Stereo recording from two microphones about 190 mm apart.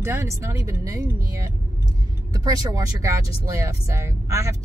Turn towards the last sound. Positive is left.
turn(degrees=-15)  # may be behind; listen again after turning